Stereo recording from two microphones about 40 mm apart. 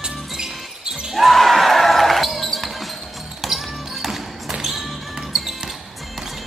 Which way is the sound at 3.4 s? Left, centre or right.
Centre.